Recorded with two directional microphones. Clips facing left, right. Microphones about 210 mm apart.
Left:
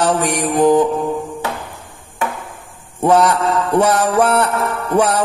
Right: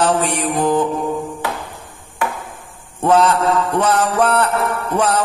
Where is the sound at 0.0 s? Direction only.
15° left (ahead or behind).